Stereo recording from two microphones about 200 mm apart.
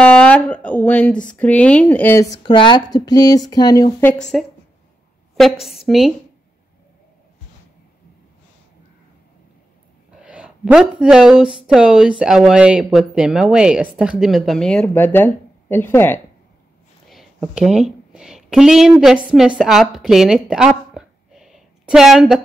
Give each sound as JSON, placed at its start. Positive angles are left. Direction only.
{"t": 0.0, "sound": "speech", "side_deg": 5}
{"t": 2.3, "sound": "speech", "side_deg": 25}
{"t": 4.2, "sound": "speech", "side_deg": 0}
{"t": 10.1, "sound": "speech", "side_deg": -5}
{"t": 17.1, "sound": "speech", "side_deg": 0}
{"t": 20.4, "sound": "a sound", "side_deg": -5}